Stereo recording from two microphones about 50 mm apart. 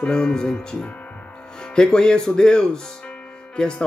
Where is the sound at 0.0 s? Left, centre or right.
Centre.